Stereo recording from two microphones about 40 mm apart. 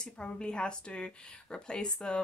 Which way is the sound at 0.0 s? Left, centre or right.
Left.